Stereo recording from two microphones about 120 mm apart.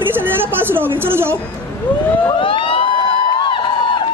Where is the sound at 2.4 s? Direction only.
45° left (ahead or behind).